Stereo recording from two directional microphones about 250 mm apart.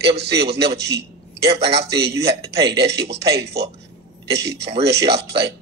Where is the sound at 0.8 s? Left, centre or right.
Right.